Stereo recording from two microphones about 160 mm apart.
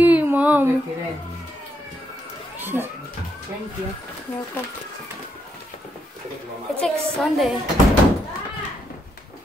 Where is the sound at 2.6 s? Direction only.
15° right (ahead or behind).